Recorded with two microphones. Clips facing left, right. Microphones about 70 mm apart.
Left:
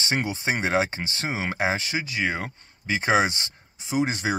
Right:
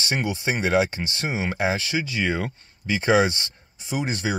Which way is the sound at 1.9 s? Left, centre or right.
Centre.